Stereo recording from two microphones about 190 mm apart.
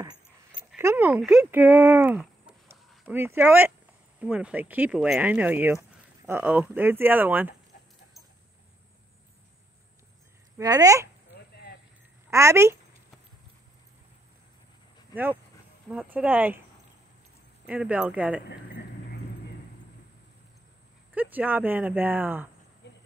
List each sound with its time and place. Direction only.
0.7 s speech: 10° right (ahead or behind)
10.6 s speech: 20° right (ahead or behind)
12.3 s a woman's voice: 15° right (ahead or behind)
15.9 s speech: 5° right (ahead or behind)
17.6 s speech: 5° right (ahead or behind)
21.1 s speech: 10° right (ahead or behind)
22.8 s insect: 65° left (ahead or behind)